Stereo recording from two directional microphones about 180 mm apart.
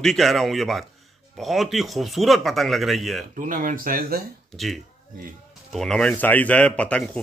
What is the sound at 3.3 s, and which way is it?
Speech, 45° right (ahead or behind).